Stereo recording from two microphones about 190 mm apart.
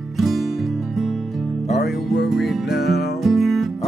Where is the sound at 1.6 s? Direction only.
40° left (ahead or behind).